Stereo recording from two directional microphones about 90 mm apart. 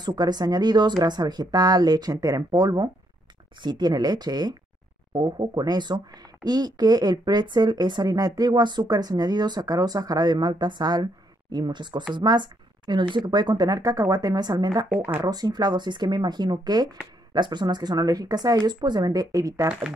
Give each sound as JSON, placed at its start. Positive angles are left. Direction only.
{"t": 0.0, "sound": "speech", "side_deg": -50}
{"t": 15.0, "sound": "speech", "side_deg": -20}
{"t": 15.2, "sound": "speech", "side_deg": -50}